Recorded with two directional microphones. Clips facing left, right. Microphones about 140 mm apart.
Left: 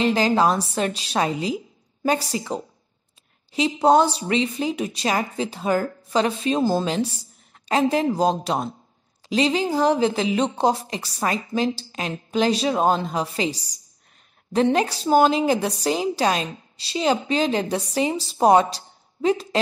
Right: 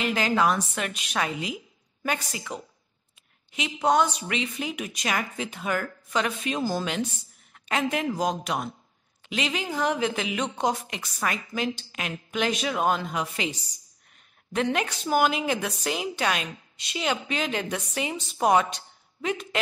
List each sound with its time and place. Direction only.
0.0 s a woman's voice: 30° left (ahead or behind)